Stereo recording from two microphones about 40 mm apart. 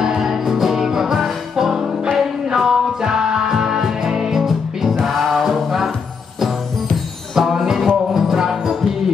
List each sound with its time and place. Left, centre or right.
0.2 s music: centre
7.3 s music: centre